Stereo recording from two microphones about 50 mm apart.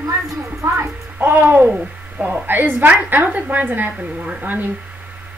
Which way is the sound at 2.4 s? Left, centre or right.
Right.